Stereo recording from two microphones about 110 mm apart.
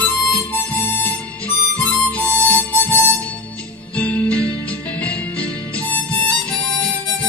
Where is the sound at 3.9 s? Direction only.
15° left (ahead or behind).